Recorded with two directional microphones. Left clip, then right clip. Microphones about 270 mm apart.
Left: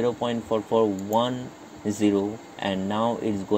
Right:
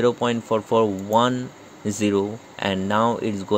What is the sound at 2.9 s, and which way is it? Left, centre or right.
Speech, right.